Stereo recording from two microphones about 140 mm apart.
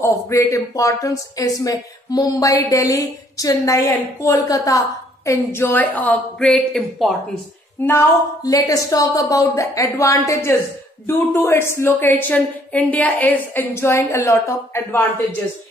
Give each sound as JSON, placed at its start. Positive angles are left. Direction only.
{"t": 0.0, "sound": "speech", "side_deg": 20}
{"t": 7.8, "sound": "a woman's voice", "side_deg": 15}
{"t": 8.5, "sound": "a woman's voice", "side_deg": 25}